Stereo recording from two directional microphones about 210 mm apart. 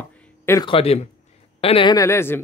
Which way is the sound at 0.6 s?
25° left (ahead or behind).